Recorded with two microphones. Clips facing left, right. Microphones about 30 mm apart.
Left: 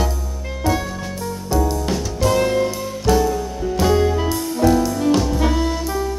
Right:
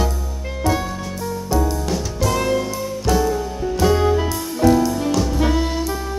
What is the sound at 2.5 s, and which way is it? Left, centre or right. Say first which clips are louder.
Music: left 1 dB; centre.